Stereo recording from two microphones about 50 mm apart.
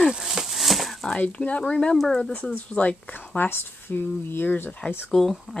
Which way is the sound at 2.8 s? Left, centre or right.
Left.